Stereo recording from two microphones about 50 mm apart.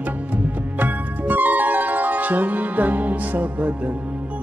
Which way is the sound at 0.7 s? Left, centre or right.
Right.